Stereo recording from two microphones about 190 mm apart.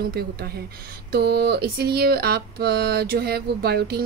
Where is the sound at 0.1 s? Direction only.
55° right (ahead or behind).